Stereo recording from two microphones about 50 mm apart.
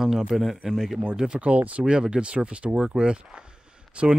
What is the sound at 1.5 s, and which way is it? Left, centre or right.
Speech, right.